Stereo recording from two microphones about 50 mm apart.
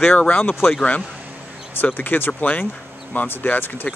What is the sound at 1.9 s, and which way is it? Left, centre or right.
Speech, left.